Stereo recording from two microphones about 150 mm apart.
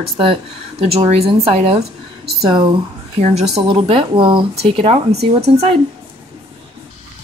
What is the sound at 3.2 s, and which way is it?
Speech, 45° right (ahead or behind).